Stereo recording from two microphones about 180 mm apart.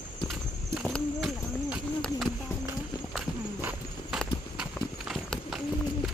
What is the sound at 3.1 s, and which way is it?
Walk, centre (ahead or behind).